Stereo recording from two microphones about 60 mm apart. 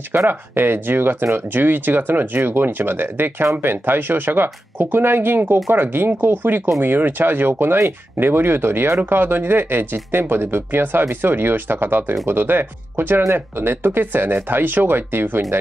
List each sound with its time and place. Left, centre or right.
0.1 s speech: right